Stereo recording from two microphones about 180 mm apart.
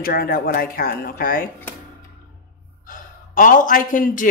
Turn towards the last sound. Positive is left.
turn(degrees=45)  # may be behind; listen again after turning